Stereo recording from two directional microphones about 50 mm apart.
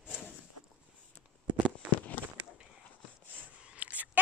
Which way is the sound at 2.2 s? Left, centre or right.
Left.